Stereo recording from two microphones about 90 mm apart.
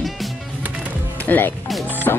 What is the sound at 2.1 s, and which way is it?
Music, 30° left (ahead or behind).